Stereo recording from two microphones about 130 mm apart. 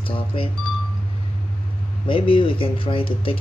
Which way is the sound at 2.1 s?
45° left (ahead or behind).